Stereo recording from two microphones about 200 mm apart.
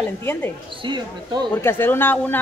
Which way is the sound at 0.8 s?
20° right (ahead or behind).